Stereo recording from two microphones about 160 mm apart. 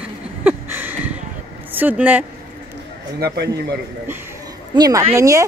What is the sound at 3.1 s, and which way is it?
Speech, 85° right.